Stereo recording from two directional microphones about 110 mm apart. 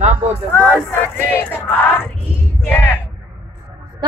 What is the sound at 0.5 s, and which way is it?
Speech, 10° left (ahead or behind).